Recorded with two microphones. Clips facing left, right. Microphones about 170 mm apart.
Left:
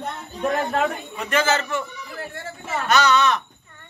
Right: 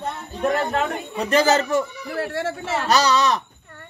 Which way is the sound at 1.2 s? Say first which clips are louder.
Right 4 dB; 35° right (ahead or behind).